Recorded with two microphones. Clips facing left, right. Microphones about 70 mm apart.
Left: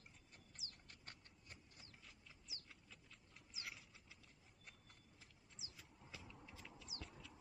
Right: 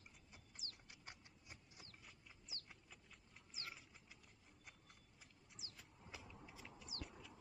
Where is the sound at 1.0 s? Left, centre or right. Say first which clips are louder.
Right 3 dB; centre.